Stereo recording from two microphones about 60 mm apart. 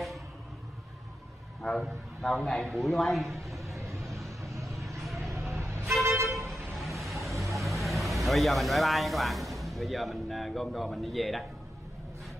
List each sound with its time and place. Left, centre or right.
1.6 s a man's voice: centre
3.6 s vehicle: right
5.5 s vehicle: right
6.5 s music: centre
7.5 s speech: centre